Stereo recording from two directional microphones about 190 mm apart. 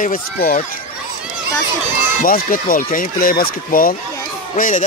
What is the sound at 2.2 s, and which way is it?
Speech, 45° left (ahead or behind).